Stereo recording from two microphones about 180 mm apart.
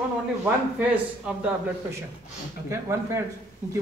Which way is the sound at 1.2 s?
10° right (ahead or behind).